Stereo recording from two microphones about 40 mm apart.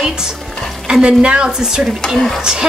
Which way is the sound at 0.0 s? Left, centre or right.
Centre.